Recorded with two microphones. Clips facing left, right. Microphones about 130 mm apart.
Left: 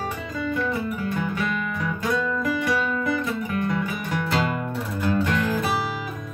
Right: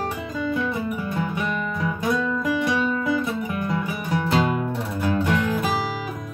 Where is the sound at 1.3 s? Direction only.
20° right (ahead or behind).